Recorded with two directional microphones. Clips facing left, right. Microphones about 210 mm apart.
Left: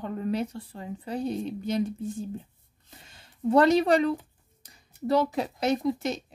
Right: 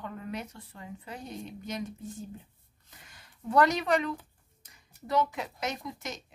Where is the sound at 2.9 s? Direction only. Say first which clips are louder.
Left 4 dB; 30° left (ahead or behind).